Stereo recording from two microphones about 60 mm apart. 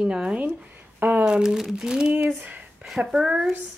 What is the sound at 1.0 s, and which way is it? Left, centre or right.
Speech, right.